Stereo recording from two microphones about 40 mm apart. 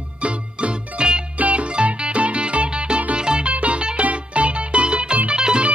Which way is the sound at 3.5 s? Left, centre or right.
Right.